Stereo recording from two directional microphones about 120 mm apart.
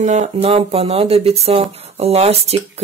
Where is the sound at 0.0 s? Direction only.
75° right (ahead or behind).